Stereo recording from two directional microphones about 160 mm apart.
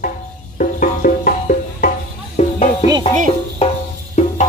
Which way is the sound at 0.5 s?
60° left (ahead or behind).